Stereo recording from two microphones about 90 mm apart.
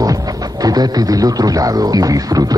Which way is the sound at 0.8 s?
45° right (ahead or behind).